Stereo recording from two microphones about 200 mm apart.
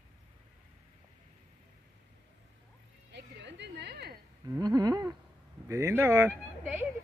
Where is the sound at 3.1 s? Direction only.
60° right (ahead or behind).